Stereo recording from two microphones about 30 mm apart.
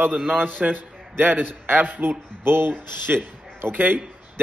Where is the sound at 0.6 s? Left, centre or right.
Right.